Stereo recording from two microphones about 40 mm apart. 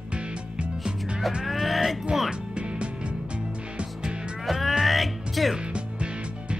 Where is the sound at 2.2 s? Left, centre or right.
Right.